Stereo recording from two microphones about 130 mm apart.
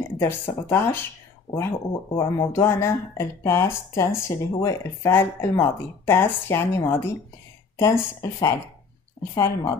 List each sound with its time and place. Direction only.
0.2 s speech: 15° left (ahead or behind)